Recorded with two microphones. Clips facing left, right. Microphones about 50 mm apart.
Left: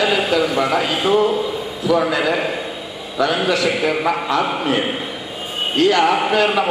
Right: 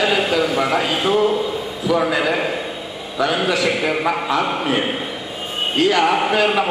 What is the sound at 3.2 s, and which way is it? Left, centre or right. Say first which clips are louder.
Speech: left 1 dB; centre.